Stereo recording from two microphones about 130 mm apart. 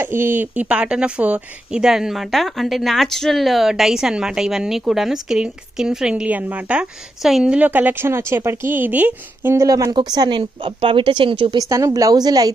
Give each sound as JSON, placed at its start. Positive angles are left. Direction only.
{"t": 0.0, "sound": "a woman's voice", "side_deg": -15}
{"t": 11.5, "sound": "a woman's voice", "side_deg": -25}